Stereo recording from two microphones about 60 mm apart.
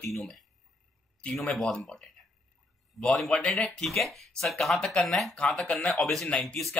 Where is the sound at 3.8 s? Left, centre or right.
Centre.